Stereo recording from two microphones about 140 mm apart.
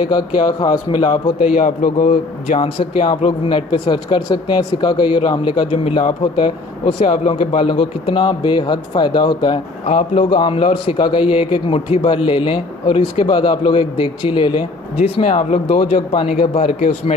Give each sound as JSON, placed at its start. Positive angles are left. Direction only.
{"t": 0.1, "sound": "speech", "side_deg": 30}
{"t": 1.5, "sound": "a man's voice", "side_deg": 80}
{"t": 2.6, "sound": "speech", "side_deg": 40}
{"t": 9.8, "sound": "speech", "side_deg": 50}
{"t": 10.3, "sound": "speech", "side_deg": 40}
{"t": 15.2, "sound": "speech", "side_deg": 50}